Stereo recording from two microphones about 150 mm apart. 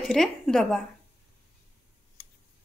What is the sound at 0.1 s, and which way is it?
Speech, centre (ahead or behind).